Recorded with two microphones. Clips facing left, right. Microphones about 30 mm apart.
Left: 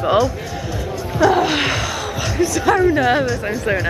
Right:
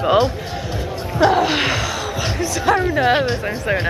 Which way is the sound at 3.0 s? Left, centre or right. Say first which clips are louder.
Even; right.